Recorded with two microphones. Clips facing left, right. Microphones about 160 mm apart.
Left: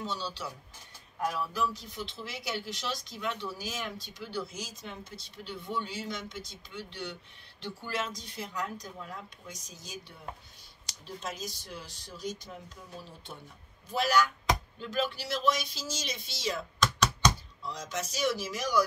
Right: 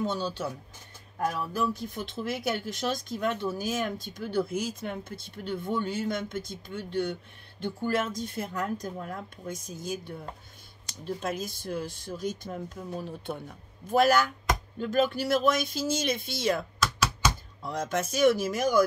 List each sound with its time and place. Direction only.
0.0 s speech: 50° right (ahead or behind)
16.8 s computer keyboard: 5° right (ahead or behind)
17.6 s speech: 55° right (ahead or behind)